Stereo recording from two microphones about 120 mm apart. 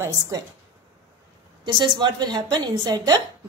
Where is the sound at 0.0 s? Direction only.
30° right (ahead or behind).